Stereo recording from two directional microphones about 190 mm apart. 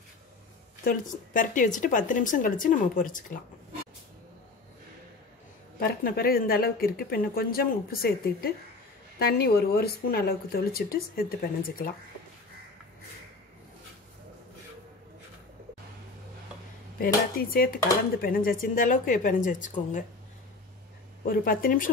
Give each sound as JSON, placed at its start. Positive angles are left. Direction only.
{"t": 0.8, "sound": "speech", "side_deg": 45}
{"t": 5.8, "sound": "speech", "side_deg": 50}
{"t": 17.0, "sound": "speech", "side_deg": 50}
{"t": 21.2, "sound": "speech", "side_deg": 50}